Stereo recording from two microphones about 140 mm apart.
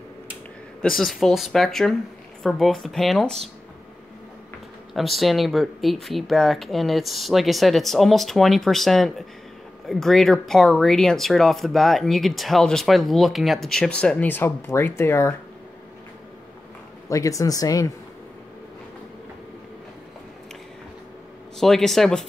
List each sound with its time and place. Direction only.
0.8 s speech: centre (ahead or behind)
4.9 s speech: centre (ahead or behind); by 15.3 s 20° left (ahead or behind)
17.1 s speech: 25° left (ahead or behind)
21.5 s speech: centre (ahead or behind)